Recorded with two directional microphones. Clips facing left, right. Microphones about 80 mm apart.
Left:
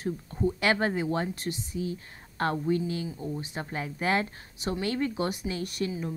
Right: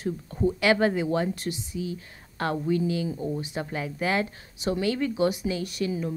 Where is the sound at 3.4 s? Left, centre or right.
Left.